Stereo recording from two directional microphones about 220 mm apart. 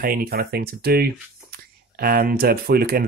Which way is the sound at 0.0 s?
40° right (ahead or behind).